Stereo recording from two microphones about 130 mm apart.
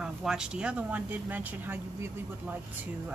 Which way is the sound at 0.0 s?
5° right (ahead or behind).